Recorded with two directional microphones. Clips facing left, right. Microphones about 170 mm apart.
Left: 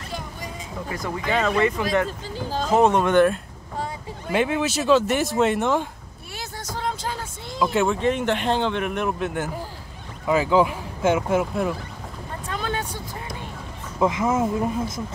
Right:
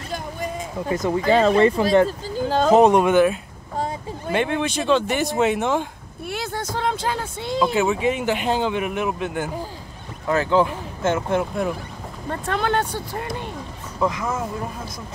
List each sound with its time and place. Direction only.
0.1 s vehicle: 50° right (ahead or behind)
0.9 s speech: 20° right (ahead or behind)
1.2 s speech: 30° right (ahead or behind)
2.7 s speech: 15° right (ahead or behind); by 5.9 s centre (ahead or behind)
6.3 s vehicle: 60° right (ahead or behind)
7.7 s speech: 5° right (ahead or behind)
12.3 s vehicle: 75° right (ahead or behind)
13.9 s speech: 20° left (ahead or behind)